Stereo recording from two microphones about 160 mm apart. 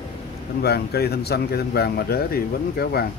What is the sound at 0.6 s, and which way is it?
Speech, 80° left.